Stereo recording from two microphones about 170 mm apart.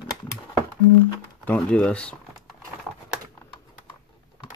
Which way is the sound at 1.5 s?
5° left (ahead or behind).